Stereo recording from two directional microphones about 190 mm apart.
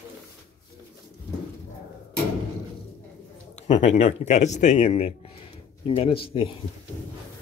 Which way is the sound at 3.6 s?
35° left (ahead or behind).